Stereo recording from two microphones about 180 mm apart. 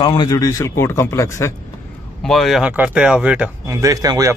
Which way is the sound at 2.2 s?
Centre (ahead or behind).